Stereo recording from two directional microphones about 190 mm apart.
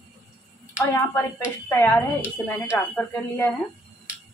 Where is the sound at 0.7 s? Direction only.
10° left (ahead or behind).